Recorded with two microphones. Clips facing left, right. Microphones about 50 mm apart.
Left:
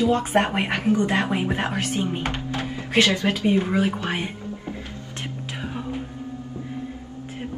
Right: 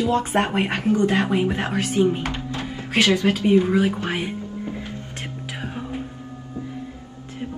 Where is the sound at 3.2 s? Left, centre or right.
Centre.